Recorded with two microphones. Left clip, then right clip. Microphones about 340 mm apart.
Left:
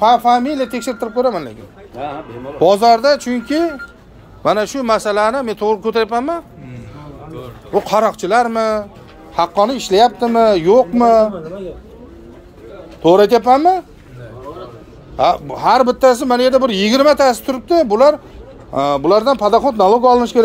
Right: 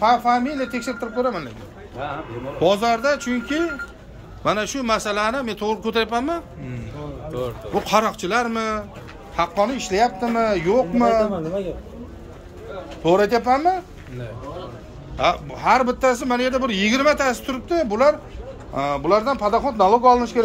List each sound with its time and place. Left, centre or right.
0.0 s speech: centre
2.0 s speech: left
2.6 s speech: centre
7.7 s speech: centre
13.0 s speech: left
15.1 s speech: centre